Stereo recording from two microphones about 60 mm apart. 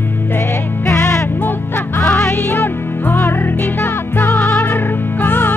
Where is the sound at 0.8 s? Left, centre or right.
Left.